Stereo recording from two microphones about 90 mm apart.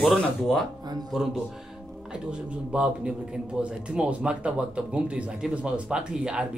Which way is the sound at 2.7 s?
10° right (ahead or behind).